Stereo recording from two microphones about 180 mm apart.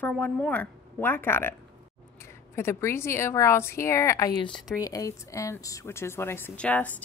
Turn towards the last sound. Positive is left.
turn(degrees=10)  # may be behind; listen again after turning